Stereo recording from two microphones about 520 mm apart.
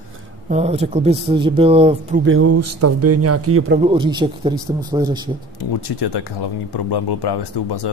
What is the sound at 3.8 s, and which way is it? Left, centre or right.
Speech, centre.